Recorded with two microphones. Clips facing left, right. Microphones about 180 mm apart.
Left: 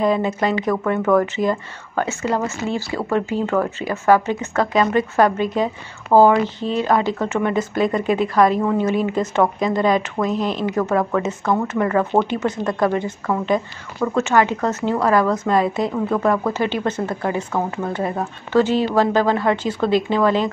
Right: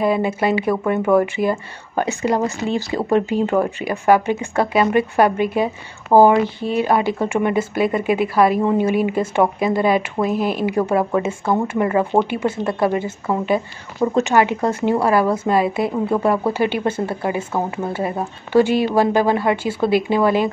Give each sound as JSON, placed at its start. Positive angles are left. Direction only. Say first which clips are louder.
{"t": 0.0, "sound": "speech", "louder": "right 1 dB", "side_deg": -10}
{"t": 12.4, "sound": "speech", "louder": "right 1 dB", "side_deg": -25}
{"t": 12.8, "sound": "speech", "louder": "even", "side_deg": -10}
{"t": 13.9, "sound": "speech", "louder": "right 1 dB", "side_deg": -20}